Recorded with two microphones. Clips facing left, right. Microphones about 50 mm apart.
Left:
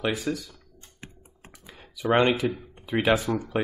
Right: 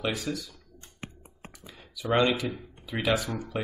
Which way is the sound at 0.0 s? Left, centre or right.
Centre.